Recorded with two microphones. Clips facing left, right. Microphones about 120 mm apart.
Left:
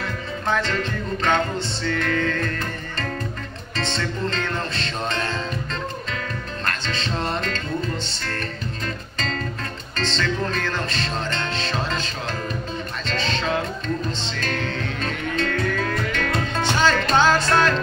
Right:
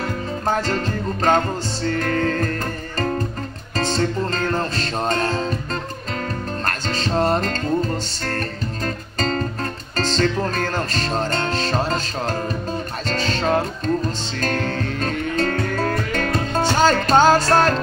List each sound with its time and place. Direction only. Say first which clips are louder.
0.0 s music: right 4 dB; 40° right (ahead or behind)
3.7 s music: right 6 dB; 40° right (ahead or behind)
6.6 s music: right 2 dB; 40° right (ahead or behind)